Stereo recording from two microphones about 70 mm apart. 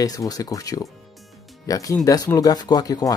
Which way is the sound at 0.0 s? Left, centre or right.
Left.